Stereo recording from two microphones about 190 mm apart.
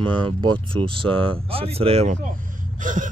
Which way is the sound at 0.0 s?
25° right (ahead or behind).